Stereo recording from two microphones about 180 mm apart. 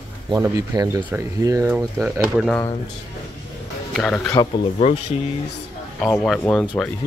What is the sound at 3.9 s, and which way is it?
Speech, 5° left (ahead or behind).